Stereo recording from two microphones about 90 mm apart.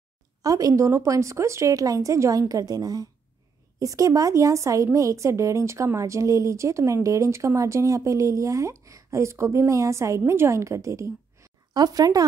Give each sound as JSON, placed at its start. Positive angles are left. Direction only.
{"t": 0.4, "sound": "speech", "side_deg": -40}
{"t": 11.7, "sound": "speech", "side_deg": -45}